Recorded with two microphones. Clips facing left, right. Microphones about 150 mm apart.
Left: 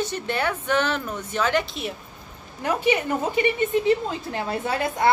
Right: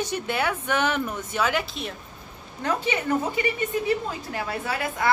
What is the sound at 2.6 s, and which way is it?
A woman's voice, 15° left (ahead or behind).